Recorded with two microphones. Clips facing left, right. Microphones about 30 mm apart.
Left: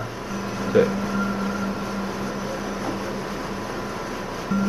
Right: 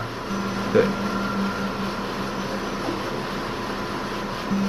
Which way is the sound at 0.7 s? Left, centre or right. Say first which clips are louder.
Left 1 dB; right.